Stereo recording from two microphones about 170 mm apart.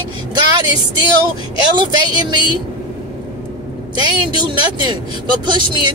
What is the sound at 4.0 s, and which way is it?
Speech, 25° right (ahead or behind).